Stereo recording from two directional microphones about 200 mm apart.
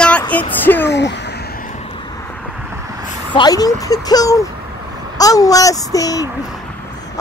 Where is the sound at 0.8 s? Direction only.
60° left (ahead or behind).